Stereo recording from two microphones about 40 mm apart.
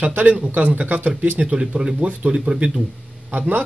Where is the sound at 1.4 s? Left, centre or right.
Right.